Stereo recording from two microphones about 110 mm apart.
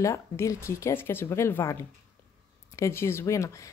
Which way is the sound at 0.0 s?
30° left (ahead or behind).